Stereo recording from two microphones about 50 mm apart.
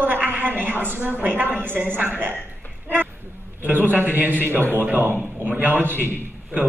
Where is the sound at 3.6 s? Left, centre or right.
Right.